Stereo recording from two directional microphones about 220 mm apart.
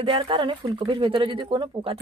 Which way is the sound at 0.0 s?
20° right (ahead or behind).